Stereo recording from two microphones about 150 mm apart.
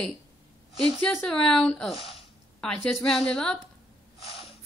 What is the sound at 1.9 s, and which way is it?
Speech, 40° left (ahead or behind).